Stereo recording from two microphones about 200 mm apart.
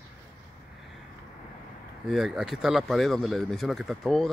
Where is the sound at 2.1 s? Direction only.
5° right (ahead or behind).